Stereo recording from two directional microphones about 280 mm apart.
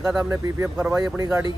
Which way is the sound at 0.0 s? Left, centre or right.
Centre.